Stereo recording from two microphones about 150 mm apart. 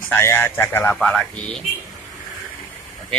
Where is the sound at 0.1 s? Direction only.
15° left (ahead or behind).